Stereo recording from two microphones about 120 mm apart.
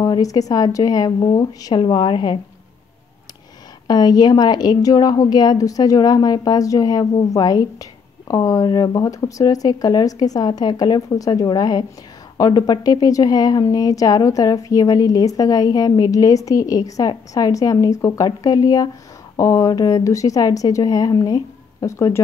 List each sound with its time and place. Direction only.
0.0 s a woman's voice: 30° left (ahead or behind)
3.8 s a woman's voice: 35° left (ahead or behind)